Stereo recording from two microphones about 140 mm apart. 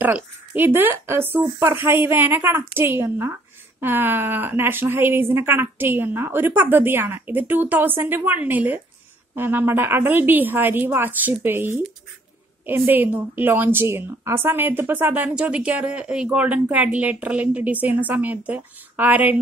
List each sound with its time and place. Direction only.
0.0 s a woman's voice: 15° right (ahead or behind)